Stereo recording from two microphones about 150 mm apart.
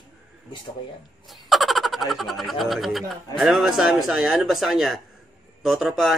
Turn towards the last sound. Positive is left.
turn(degrees=0)  # may be behind; listen again after turning